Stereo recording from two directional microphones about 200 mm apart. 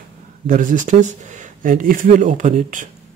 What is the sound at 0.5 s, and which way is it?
Speech, 40° right (ahead or behind).